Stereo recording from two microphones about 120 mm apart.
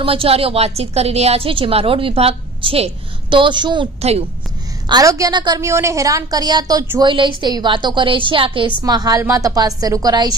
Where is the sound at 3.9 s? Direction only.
60° right (ahead or behind).